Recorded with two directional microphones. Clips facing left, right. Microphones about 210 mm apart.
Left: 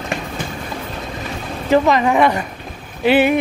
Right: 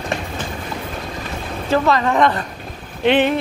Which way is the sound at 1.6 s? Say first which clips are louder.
Left 3 dB; 15° left (ahead or behind).